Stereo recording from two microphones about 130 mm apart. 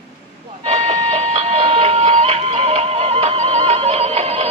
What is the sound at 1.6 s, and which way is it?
Music, 45° right (ahead or behind).